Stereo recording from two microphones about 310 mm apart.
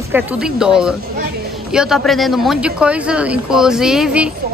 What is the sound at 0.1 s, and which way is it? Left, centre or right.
Speech, centre.